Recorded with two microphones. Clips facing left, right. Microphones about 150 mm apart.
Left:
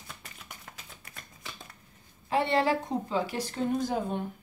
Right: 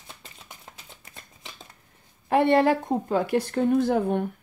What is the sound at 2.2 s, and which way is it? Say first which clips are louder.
A woman's voice: right 7 dB; 55° right (ahead or behind).